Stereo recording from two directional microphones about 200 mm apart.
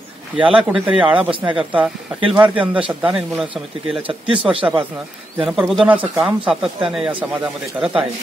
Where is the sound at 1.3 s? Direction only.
25° right (ahead or behind).